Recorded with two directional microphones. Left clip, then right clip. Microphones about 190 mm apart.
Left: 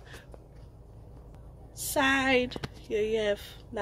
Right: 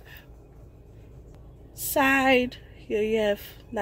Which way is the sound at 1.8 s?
20° right (ahead or behind).